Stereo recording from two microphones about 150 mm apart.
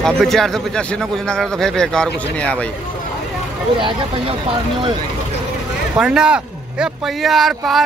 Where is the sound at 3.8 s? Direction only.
35° right (ahead or behind).